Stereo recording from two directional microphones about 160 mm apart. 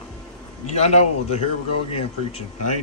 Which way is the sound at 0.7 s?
40° left (ahead or behind).